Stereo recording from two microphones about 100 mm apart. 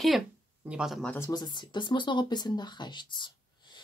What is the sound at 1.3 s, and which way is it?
Speech, 45° left (ahead or behind).